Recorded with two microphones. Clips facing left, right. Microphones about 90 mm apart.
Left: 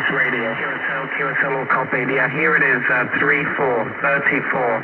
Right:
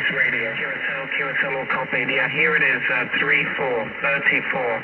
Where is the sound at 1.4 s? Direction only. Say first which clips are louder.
Left 7 dB; 25° left (ahead or behind).